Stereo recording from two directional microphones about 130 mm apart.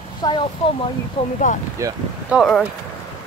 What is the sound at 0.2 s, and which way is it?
Speech, 35° left (ahead or behind).